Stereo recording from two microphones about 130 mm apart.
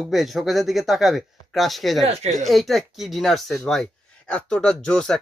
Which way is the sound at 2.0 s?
60° right (ahead or behind).